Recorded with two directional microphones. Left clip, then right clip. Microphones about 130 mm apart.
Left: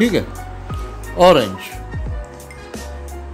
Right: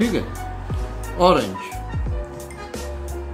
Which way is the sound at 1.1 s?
60° left (ahead or behind).